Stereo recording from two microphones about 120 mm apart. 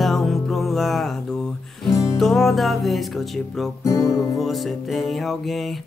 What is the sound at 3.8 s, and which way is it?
Music, 25° left (ahead or behind).